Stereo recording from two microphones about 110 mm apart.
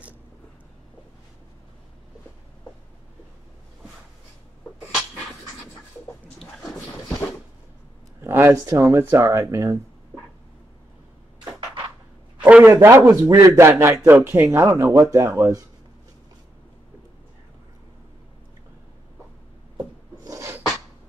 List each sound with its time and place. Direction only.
8.2 s speech: 25° right (ahead or behind)
12.4 s a sound: 10° right (ahead or behind)
12.7 s speech: 25° right (ahead or behind)
20.2 s dog: 25° right (ahead or behind)